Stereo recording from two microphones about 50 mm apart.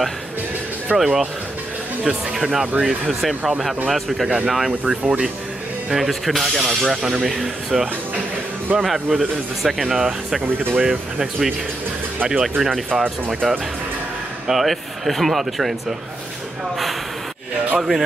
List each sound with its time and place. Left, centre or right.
0.9 s speech: centre
6.6 s speech: centre
10.4 s speech: right
10.8 s speech: centre
12.4 s speech: centre
17.7 s speech: centre